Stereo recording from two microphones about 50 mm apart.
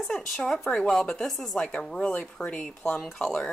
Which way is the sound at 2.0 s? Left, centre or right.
Left.